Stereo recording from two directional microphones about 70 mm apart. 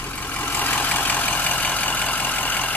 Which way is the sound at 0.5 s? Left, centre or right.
Left.